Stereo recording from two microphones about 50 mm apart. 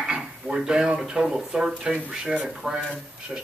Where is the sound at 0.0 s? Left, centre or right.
Centre.